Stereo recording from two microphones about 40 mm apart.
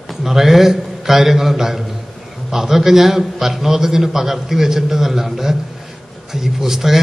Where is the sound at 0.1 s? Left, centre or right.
Centre.